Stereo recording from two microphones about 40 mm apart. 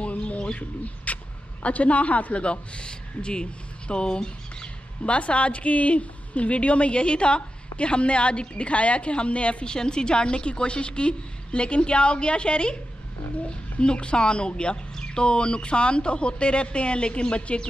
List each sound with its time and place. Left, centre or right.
0.0 s speech: left
9.7 s speech: left